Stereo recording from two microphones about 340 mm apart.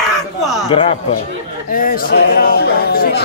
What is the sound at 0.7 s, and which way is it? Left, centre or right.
Speech, centre.